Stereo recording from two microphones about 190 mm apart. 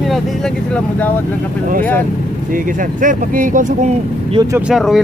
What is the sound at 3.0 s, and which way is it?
Speech, 45° right (ahead or behind).